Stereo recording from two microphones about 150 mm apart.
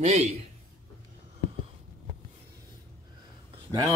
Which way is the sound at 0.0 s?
45° right (ahead or behind).